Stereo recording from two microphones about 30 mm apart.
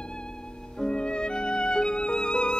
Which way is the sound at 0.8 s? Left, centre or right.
Left.